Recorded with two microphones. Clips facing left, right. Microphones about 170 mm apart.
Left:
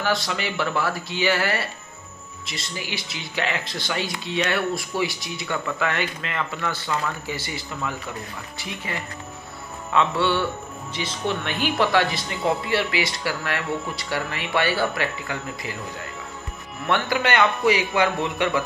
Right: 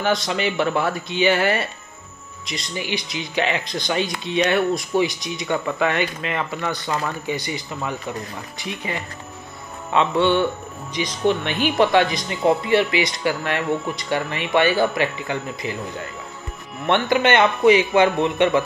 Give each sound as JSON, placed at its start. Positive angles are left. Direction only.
{"t": 0.0, "sound": "speech", "side_deg": -20}
{"t": 16.8, "sound": "speech", "side_deg": -20}